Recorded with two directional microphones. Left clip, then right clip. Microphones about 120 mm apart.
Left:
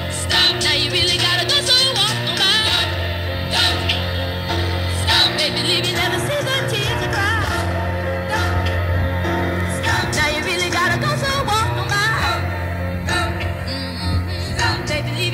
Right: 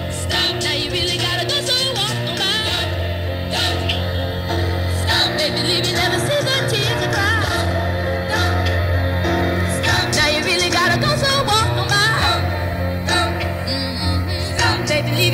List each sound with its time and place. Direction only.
0.3 s music: 35° right (ahead or behind)
5.0 s music: 40° right (ahead or behind)
9.3 s music: 55° right (ahead or behind); by 12.4 s 80° right
14.6 s music: 90° right